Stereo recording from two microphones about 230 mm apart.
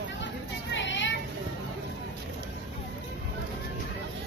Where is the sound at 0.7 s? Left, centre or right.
Left.